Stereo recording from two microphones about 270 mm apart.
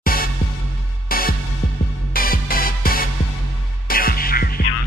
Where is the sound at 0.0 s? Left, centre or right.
Left.